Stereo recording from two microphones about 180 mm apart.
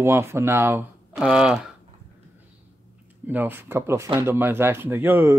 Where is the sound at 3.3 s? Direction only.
10° right (ahead or behind).